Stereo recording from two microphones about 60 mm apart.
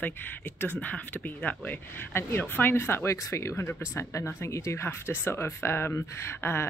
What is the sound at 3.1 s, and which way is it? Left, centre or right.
Speech, left.